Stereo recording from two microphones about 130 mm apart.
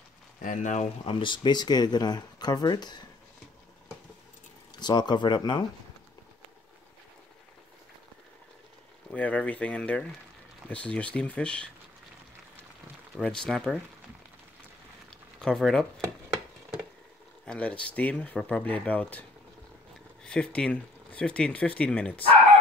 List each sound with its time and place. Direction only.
0.4 s speech: 80° left
1.0 s speech: 40° left (ahead or behind)
4.7 s speech: 35° left (ahead or behind)
9.1 s speech: 10° left (ahead or behind)
13.2 s speech: 5° left (ahead or behind)
15.0 s a sound: 5° left (ahead or behind)
17.5 s speech: 10° left (ahead or behind)
20.2 s speech: 10° left (ahead or behind)